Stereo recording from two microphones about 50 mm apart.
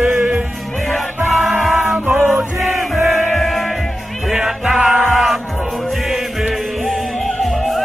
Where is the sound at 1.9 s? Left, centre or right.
Right.